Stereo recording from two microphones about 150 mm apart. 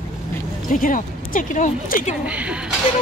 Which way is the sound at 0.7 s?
65° left (ahead or behind).